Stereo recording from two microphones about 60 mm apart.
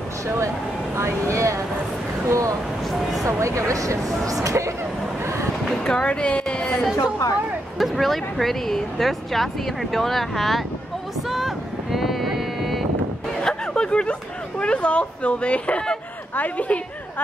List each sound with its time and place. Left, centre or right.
1.3 s speech: right
2.9 s a sound: centre
3.3 s speech: right
5.9 s a woman's voice: centre
7.0 s a woman's voice: left
7.8 s speech: centre
11.2 s vehicle: centre
13.4 s a sound: centre
14.6 s speech: centre